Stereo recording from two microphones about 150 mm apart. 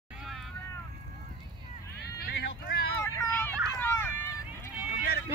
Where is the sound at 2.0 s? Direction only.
90° left.